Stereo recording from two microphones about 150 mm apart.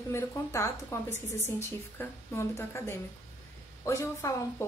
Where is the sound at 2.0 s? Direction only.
20° left (ahead or behind).